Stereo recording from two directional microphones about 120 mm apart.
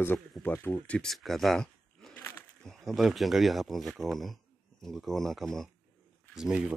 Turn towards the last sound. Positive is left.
turn(degrees=-5)  # may be behind; listen again after turning